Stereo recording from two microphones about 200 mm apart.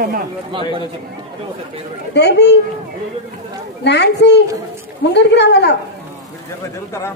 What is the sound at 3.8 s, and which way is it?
A woman's voice, 60° left (ahead or behind).